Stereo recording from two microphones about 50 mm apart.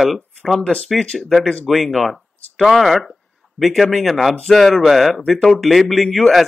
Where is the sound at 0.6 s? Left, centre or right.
Centre.